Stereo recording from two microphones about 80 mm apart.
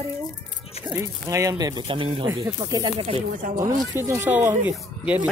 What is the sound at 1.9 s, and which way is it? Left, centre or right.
Speech, right.